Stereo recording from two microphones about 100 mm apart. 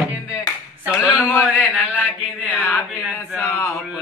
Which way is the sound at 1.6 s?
15° right (ahead or behind).